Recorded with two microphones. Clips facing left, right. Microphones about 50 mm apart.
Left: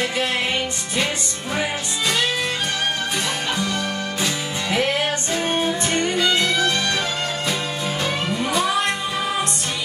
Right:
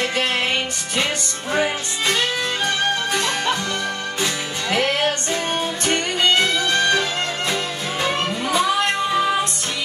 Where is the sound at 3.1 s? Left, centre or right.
Right.